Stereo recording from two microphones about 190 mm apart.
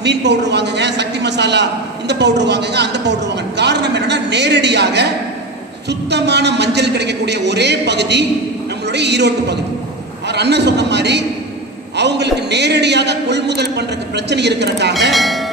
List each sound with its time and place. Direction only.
0.0 s a man's voice: 65° right (ahead or behind)
15.0 s speech: centre (ahead or behind)